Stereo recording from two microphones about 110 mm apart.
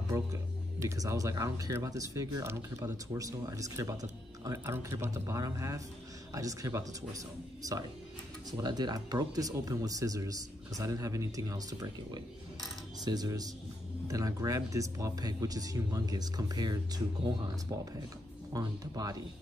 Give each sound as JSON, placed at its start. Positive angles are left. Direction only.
{"t": 0.1, "sound": "speech", "side_deg": -30}
{"t": 18.5, "sound": "speech", "side_deg": -35}